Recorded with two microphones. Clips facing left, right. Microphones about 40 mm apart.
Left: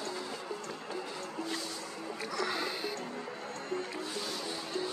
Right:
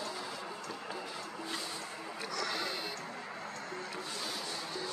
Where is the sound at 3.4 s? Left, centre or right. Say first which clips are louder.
Left 4 dB; left.